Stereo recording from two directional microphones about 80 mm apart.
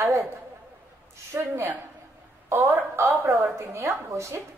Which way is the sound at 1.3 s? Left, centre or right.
Right.